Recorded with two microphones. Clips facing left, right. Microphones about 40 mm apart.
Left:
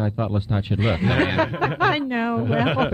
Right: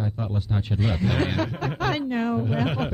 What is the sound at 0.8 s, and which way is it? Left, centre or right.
Speech, left.